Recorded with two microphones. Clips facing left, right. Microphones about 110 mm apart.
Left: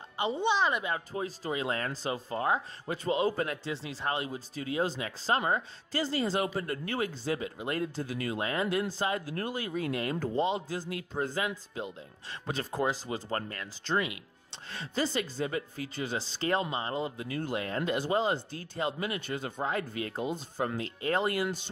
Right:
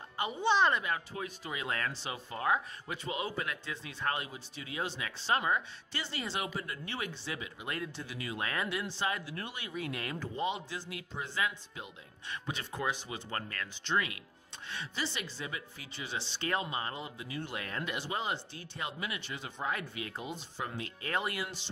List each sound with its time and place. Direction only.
0.2 s speech: 25° left (ahead or behind)
0.5 s speech: 5° left (ahead or behind)
0.8 s speech: 30° left (ahead or behind)
4.3 s speech: 40° left (ahead or behind)
8.4 s speech: 30° left (ahead or behind)
8.6 s speech: 40° left (ahead or behind); by 14.6 s 25° left (ahead or behind)
14.7 s speech: 40° left (ahead or behind)
17.6 s speech: 30° left (ahead or behind)
20.8 s speech: 30° left (ahead or behind)